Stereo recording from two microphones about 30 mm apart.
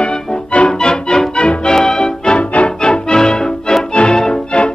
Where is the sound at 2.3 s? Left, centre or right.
Left.